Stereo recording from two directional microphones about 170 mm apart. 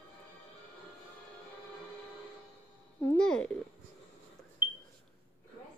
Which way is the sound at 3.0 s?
10° left (ahead or behind).